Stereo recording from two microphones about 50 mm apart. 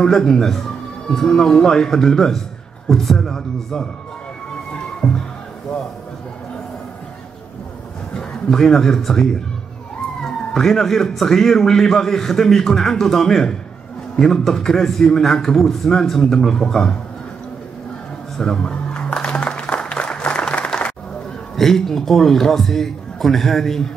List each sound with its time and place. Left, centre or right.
0.0 s speech: centre
5.0 s music: centre
8.1 s a man's voice: centre
18.6 s applause: left
21.5 s a man's voice: centre